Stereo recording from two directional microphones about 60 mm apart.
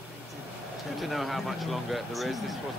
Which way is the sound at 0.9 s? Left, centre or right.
Centre.